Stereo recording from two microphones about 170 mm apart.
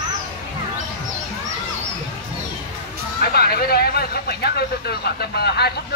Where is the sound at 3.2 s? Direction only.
65° left (ahead or behind).